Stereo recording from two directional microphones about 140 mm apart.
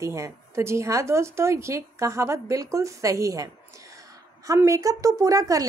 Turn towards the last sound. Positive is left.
turn(degrees=-25)  # may be behind; listen again after turning